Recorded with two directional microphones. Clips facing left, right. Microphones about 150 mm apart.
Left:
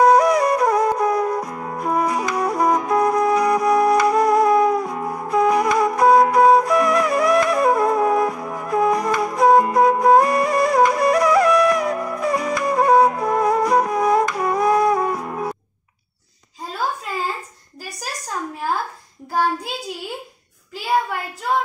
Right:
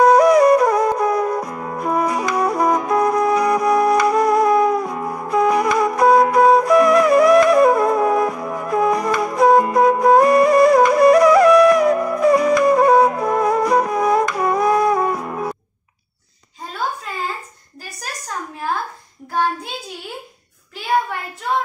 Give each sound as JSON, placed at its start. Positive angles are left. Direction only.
{"t": 0.0, "sound": "music", "side_deg": -65}